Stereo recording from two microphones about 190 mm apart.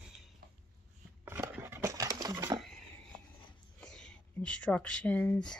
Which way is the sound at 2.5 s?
5° left (ahead or behind).